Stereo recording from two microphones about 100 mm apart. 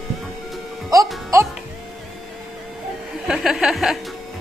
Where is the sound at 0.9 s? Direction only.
35° right (ahead or behind).